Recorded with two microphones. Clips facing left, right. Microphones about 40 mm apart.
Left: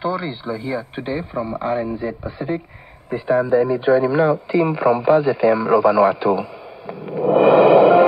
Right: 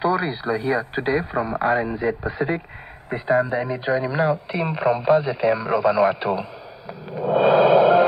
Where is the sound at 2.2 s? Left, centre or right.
Right.